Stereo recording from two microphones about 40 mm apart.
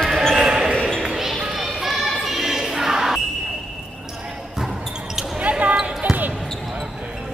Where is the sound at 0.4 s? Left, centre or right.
Centre.